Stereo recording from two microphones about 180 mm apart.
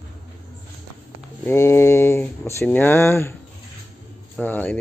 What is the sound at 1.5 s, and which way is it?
Speech, 15° left (ahead or behind).